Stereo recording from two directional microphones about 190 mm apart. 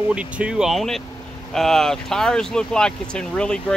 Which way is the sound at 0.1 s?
5° right (ahead or behind).